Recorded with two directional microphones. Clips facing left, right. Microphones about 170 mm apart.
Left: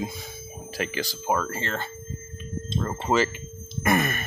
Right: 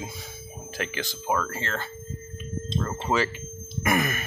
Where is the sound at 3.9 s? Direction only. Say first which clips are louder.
Left 2 dB; 10° right (ahead or behind).